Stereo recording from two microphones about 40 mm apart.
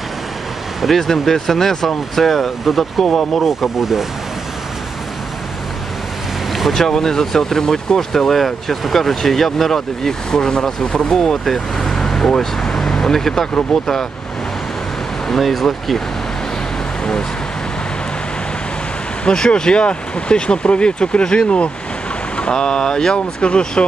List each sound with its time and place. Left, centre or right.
0.8 s speech: centre
3.0 s speech: centre
3.4 s speech: centre
6.7 s speech: centre
15.2 s speech: centre
19.2 s speech: left